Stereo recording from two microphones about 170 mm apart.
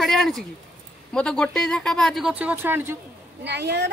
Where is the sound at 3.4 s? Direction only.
80° right.